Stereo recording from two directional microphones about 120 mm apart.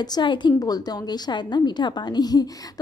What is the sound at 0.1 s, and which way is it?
A woman's voice, 40° left (ahead or behind).